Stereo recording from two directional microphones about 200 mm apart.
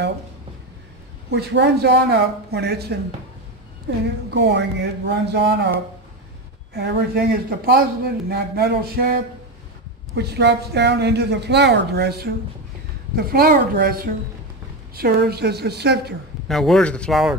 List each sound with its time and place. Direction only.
1.3 s a woman's voice: 60° right (ahead or behind)
6.7 s a man's voice: 55° right (ahead or behind)
16.4 s speech: centre (ahead or behind)